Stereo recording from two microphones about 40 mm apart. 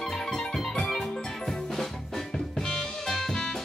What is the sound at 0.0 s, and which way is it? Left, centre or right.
Music, centre.